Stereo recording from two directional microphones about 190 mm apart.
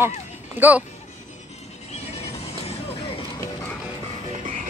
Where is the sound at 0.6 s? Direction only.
10° right (ahead or behind).